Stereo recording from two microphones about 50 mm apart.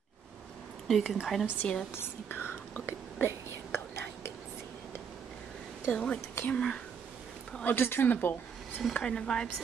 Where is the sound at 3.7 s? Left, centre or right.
Left.